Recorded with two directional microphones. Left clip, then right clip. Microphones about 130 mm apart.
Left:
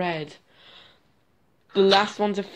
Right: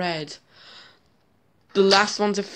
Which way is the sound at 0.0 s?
20° right (ahead or behind).